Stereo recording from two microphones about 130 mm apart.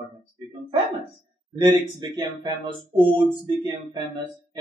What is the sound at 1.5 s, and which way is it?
A man's voice, 35° right (ahead or behind).